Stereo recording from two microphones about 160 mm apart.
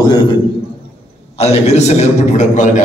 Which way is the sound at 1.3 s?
40° left (ahead or behind).